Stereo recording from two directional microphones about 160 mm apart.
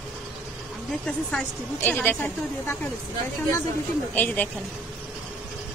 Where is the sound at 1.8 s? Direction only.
10° left (ahead or behind).